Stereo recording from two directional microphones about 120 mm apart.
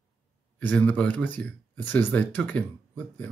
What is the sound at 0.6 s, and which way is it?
Speech, 10° left (ahead or behind).